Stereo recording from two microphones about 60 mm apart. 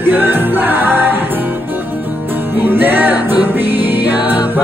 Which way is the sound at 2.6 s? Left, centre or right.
Right.